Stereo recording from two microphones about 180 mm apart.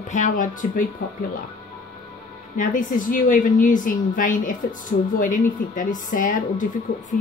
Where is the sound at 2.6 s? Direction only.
45° left (ahead or behind).